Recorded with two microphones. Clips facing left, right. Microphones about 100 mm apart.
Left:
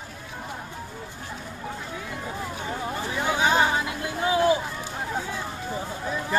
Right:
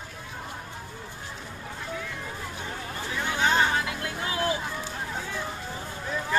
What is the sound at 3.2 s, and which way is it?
Music, 10° left (ahead or behind).